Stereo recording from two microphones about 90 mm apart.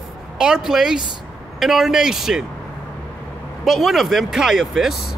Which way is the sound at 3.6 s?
Centre (ahead or behind).